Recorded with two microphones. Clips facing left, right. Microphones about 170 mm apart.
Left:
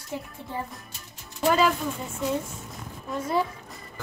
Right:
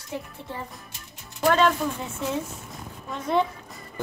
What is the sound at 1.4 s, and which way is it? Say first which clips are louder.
Speech: right 1 dB; 5° left (ahead or behind).